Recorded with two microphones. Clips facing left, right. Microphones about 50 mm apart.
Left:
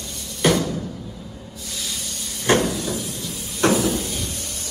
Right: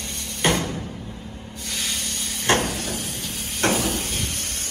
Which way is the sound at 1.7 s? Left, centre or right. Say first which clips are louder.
Right 3 dB; right.